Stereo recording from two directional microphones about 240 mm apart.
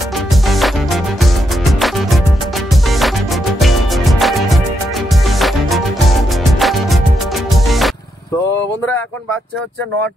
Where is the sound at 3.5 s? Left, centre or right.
Centre.